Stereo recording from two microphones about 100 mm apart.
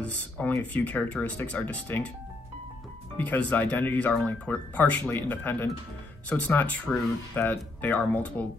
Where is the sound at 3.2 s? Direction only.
15° left (ahead or behind).